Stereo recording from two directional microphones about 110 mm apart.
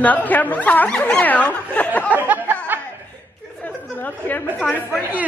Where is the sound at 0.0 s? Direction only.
15° left (ahead or behind).